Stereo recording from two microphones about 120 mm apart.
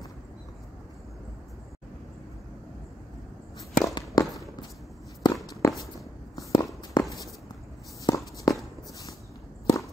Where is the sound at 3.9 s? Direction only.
35° left (ahead or behind).